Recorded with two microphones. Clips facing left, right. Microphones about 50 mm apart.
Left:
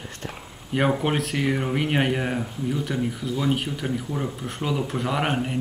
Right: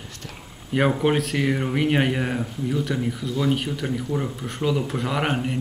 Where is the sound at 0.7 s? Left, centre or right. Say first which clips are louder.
Right 2 dB; centre.